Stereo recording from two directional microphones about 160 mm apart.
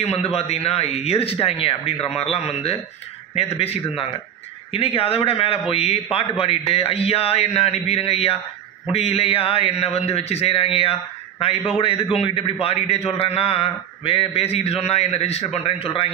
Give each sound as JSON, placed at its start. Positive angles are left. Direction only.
{"t": 0.0, "sound": "a man's voice", "side_deg": 40}
{"t": 4.7, "sound": "a man's voice", "side_deg": 35}